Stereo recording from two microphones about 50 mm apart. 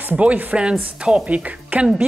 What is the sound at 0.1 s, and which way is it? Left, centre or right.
Speech, right.